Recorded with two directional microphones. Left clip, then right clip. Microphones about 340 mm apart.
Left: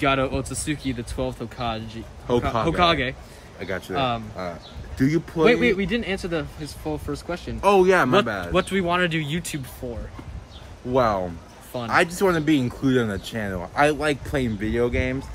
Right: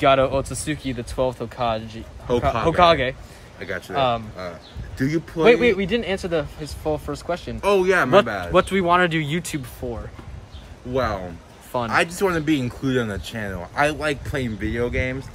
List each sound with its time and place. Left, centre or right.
0.0 s speech: centre
2.3 s speech: centre
2.7 s speech: centre
3.5 s speech: centre
3.9 s speech: centre
4.4 s speech: centre
5.5 s speech: centre
7.6 s speech: centre
8.5 s speech: centre
10.9 s speech: centre